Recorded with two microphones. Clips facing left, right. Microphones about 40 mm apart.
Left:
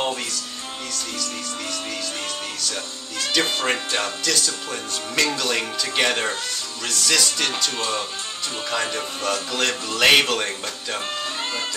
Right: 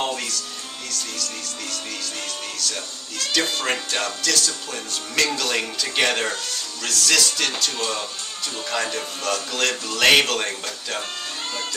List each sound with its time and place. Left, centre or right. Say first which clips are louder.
0.0 s music: even; centre
0.9 s speech: even; centre